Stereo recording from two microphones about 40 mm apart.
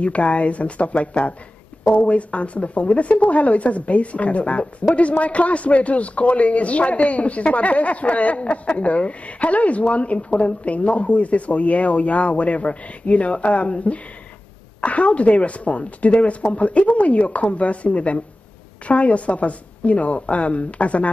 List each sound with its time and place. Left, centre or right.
0.0 s speech: left